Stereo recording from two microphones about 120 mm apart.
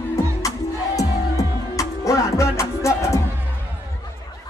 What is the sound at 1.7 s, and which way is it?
Music, 25° left (ahead or behind).